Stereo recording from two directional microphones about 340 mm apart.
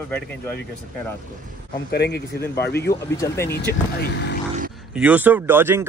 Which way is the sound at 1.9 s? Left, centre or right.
Left.